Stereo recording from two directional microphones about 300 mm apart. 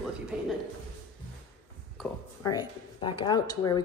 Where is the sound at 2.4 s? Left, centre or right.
Centre.